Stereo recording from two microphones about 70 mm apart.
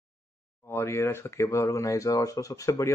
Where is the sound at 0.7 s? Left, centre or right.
Left.